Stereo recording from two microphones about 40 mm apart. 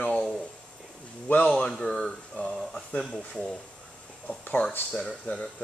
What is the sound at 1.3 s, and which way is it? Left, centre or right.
Speech, left.